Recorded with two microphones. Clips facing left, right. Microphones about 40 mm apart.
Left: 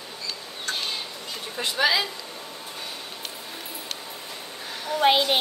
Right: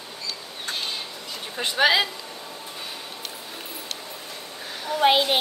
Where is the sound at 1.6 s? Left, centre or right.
Right.